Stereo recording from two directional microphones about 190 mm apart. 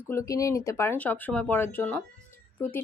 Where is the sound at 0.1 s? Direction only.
15° left (ahead or behind).